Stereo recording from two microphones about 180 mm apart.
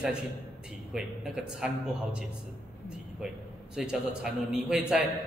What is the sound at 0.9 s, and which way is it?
Speech, 5° right (ahead or behind).